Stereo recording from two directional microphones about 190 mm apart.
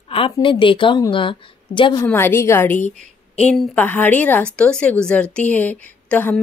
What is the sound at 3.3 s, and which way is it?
A woman's voice, centre (ahead or behind).